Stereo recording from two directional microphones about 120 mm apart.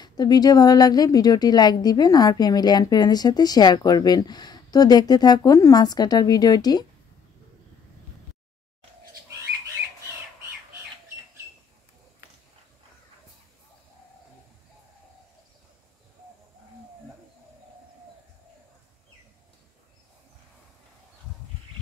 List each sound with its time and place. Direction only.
0.0 s a woman's voice: 35° left (ahead or behind)